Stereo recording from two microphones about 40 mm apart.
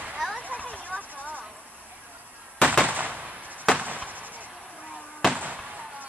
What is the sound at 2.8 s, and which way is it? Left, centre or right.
Fireworks, right.